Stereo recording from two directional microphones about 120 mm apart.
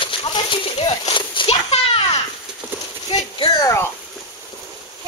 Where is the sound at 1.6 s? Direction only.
55° left (ahead or behind).